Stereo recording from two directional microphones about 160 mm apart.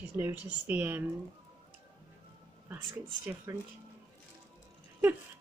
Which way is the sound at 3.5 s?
15° right (ahead or behind).